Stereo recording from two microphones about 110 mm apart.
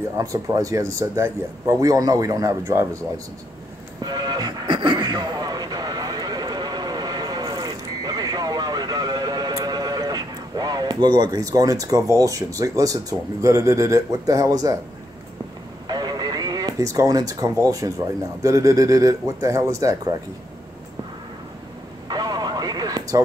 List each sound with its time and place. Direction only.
0.2 s speech: 35° right (ahead or behind)
4.0 s music: 40° right (ahead or behind)
13.4 s speech: 30° right (ahead or behind)
15.9 s radio: 40° right (ahead or behind)
18.4 s speech: 30° right (ahead or behind)
22.0 s vehicle: 40° right (ahead or behind)